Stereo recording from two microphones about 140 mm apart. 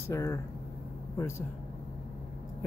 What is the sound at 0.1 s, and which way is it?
Speech, 25° left (ahead or behind).